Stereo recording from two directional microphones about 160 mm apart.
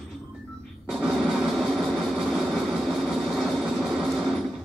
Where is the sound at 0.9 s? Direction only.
Centre (ahead or behind).